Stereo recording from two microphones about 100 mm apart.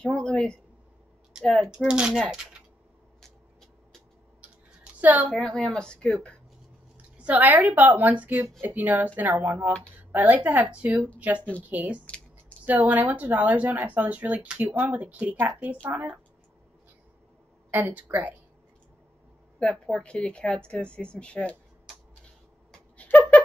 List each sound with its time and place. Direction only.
0.0 s speech: 10° left (ahead or behind)
1.4 s a woman's voice: centre (ahead or behind)
5.0 s a woman's voice: 15° right (ahead or behind)
5.3 s speech: 5° left (ahead or behind)
7.2 s a woman's voice: 15° right (ahead or behind)
17.6 s a woman's voice: 20° right (ahead or behind)
19.6 s speech: 5° left (ahead or behind)
22.7 s a sound: 15° left (ahead or behind)